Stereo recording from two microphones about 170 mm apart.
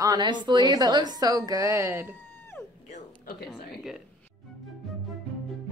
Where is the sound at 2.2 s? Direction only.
10° left (ahead or behind).